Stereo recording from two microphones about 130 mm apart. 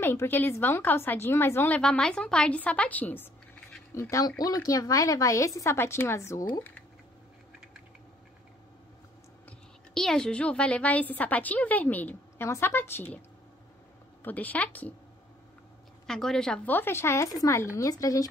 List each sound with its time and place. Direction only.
0.0 s a woman's voice: 15° left (ahead or behind)
1.8 s a woman's voice: 5° left (ahead or behind)
9.5 s a woman's voice: 5° left (ahead or behind)
14.2 s a woman's voice: 15° left (ahead or behind)
16.1 s speech: 5° left (ahead or behind); by 18.3 s 25° left (ahead or behind)